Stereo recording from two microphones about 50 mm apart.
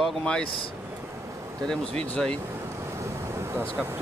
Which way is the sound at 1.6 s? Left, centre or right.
Centre.